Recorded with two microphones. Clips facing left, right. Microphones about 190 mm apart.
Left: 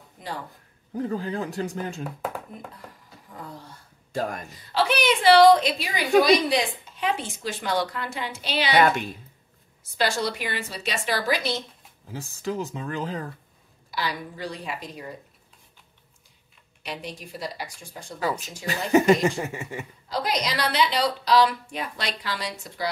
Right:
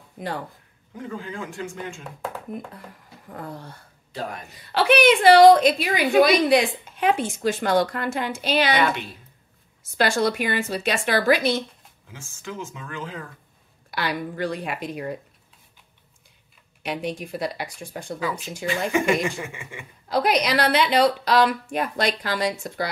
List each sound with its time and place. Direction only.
0.9 s speech: 35° left (ahead or behind)
4.7 s a woman's voice: 60° right (ahead or behind)
8.7 s a woman's voice: 45° left (ahead or behind)
9.9 s a woman's voice: 50° right (ahead or behind)
12.1 s speech: 35° left (ahead or behind)
13.8 s a woman's voice: 60° right (ahead or behind)
16.8 s a woman's voice: 55° right (ahead or behind)
18.7 s speech: 40° left (ahead or behind)
20.1 s a woman's voice: 60° right (ahead or behind)